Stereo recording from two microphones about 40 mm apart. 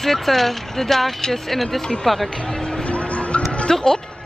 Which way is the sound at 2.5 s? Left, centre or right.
Centre.